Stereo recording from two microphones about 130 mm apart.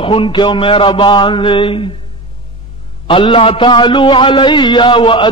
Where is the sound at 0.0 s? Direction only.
40° left (ahead or behind).